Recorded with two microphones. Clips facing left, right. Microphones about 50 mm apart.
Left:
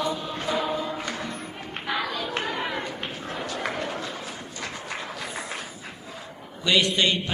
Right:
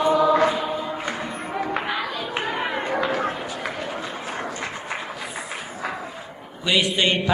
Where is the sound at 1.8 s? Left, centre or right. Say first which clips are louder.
Right 2 dB; centre.